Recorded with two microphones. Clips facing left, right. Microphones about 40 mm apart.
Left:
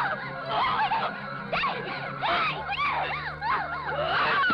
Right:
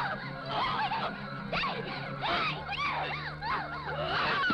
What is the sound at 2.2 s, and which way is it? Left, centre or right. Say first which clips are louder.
Police car: left 5 dB; centre.